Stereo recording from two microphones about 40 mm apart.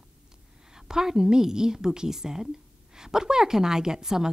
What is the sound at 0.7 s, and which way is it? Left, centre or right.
A woman's voice, centre.